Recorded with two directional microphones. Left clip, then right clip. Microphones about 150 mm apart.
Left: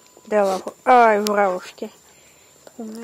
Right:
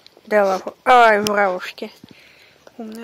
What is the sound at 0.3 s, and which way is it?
Speech, centre (ahead or behind).